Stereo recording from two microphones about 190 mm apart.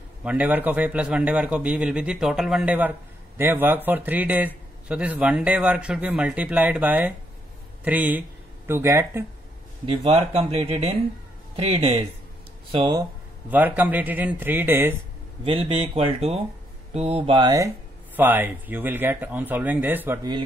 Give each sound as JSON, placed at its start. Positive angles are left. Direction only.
{"t": 0.2, "sound": "a man's voice", "side_deg": -5}
{"t": 9.8, "sound": "speech", "side_deg": -30}
{"t": 13.5, "sound": "a man's voice", "side_deg": -10}
{"t": 15.4, "sound": "speech", "side_deg": -30}
{"t": 18.1, "sound": "a man's voice", "side_deg": -10}